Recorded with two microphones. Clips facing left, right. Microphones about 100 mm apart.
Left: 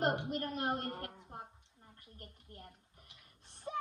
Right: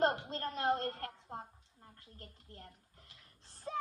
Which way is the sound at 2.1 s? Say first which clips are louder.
Left 1 dB; 15° left (ahead or behind).